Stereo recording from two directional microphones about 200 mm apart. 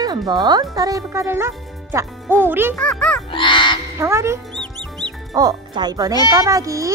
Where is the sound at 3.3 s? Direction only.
25° left (ahead or behind).